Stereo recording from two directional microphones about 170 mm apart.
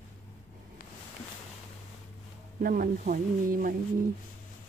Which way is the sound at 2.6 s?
55° right (ahead or behind).